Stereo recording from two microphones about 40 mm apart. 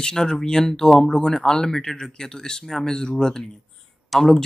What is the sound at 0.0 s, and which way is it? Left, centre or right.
Speech, centre.